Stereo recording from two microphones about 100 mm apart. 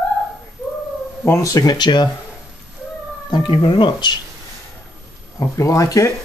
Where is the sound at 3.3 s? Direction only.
50° left (ahead or behind).